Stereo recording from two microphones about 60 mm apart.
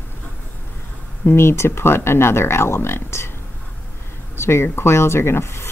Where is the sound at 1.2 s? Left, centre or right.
Left.